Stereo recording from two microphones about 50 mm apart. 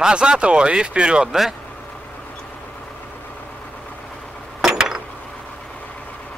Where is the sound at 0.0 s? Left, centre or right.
Centre.